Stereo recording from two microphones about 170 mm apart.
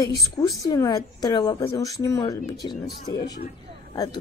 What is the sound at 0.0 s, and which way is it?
Speech, 20° left (ahead or behind).